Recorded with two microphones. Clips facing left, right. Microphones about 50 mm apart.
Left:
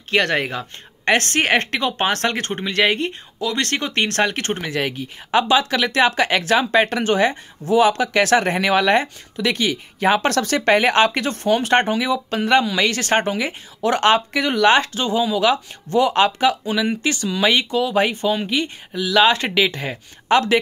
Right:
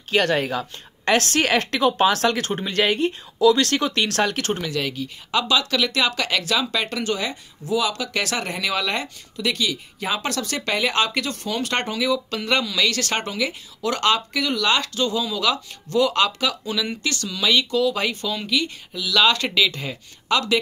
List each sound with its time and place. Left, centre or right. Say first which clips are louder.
0.1 s speech: left 1 dB; left
1.8 s speech: right 2 dB; left
3.1 s speech: right 8 dB; left
17.4 s speech: left 1 dB; left